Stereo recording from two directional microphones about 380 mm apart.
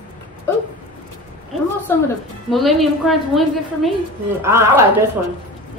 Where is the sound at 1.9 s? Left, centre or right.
Centre.